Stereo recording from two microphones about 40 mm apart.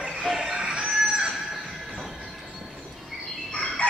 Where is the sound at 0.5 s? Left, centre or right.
Right.